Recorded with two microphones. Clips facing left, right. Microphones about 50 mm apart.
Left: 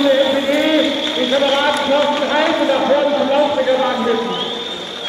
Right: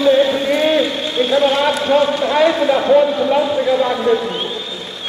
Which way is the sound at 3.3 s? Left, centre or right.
Centre.